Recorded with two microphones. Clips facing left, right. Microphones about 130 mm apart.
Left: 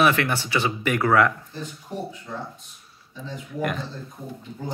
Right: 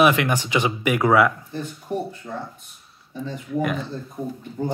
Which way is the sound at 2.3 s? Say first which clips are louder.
Right 2 dB; 45° right (ahead or behind).